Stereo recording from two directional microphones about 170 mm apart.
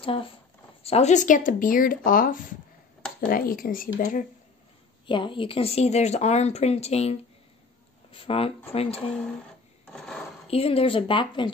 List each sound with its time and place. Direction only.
0.0 s speech: 30° left (ahead or behind); by 4.3 s 45° left (ahead or behind)
5.0 s speech: 30° left (ahead or behind)
9.8 s a sound: 5° left (ahead or behind)
10.5 s speech: 35° left (ahead or behind)